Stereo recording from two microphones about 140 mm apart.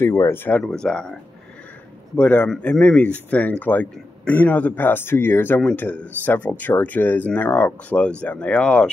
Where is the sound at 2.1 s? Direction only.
10° left (ahead or behind).